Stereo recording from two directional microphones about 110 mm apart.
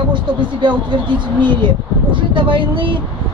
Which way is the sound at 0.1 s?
45° right (ahead or behind).